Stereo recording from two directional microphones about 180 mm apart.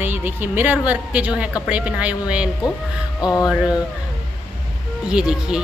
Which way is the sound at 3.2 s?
20° left (ahead or behind).